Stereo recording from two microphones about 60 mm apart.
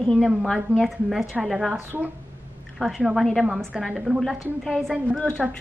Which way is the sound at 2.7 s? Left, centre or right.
Centre.